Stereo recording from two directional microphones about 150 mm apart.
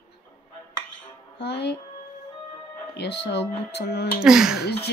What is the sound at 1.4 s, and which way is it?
Speech, 90° left.